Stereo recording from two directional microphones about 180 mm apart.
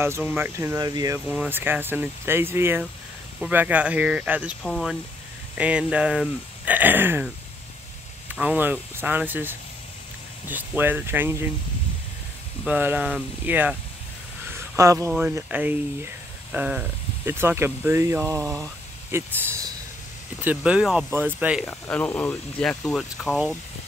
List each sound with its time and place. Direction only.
0.0 s speech: 10° right (ahead or behind)
8.4 s speech: 10° right (ahead or behind)
12.6 s speech: 10° right (ahead or behind)
14.8 s speech: 15° right (ahead or behind)
20.3 s speech: 5° right (ahead or behind)
21.6 s speech: 10° left (ahead or behind)